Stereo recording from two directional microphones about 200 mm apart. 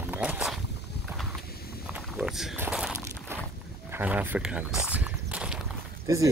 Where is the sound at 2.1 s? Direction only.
5° right (ahead or behind).